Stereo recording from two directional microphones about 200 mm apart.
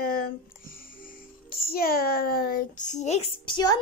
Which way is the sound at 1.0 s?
50° left (ahead or behind).